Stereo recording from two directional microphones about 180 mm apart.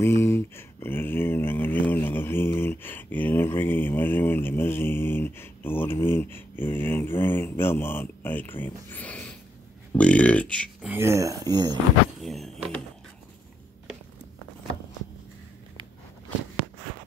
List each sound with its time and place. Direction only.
0.0 s speech: 15° left (ahead or behind)
10.9 s speech: 15° right (ahead or behind)
12.2 s speech: centre (ahead or behind)